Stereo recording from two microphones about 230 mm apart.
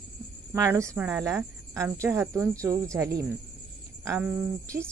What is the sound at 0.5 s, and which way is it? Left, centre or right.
Speech, centre.